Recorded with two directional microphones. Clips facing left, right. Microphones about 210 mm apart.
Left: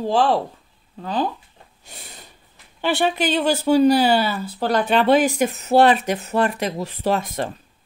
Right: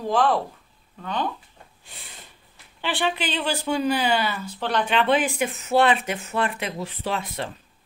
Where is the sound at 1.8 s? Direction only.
40° left (ahead or behind).